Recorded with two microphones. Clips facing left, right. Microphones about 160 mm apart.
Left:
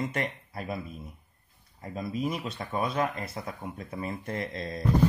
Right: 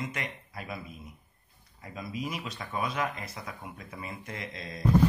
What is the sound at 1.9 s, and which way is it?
Speech, 30° left (ahead or behind).